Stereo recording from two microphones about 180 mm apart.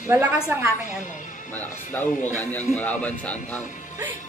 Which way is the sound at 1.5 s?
10° left (ahead or behind).